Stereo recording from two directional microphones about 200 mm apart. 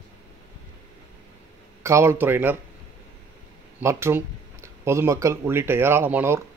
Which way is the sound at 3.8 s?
15° right (ahead or behind).